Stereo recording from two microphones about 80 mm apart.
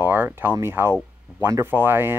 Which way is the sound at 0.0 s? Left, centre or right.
Right.